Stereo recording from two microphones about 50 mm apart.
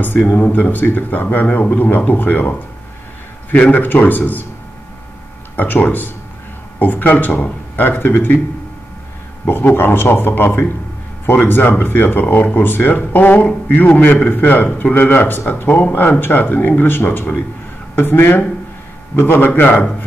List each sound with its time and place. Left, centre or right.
0.3 s speech: left
3.5 s speech: left
5.6 s speech: left
9.5 s speech: left